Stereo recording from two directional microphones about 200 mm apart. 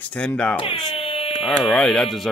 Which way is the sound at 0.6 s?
25° left (ahead or behind).